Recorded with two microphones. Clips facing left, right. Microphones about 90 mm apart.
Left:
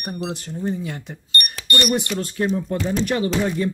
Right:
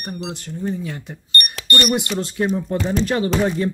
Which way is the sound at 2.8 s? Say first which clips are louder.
Right 3 dB; 30° right (ahead or behind).